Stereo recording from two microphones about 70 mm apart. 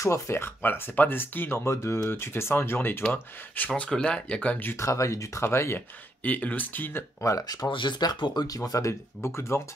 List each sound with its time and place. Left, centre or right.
0.0 s speech: left
1.6 s speech: left
4.7 s speech: left
6.2 s speech: left
7.2 s speech: left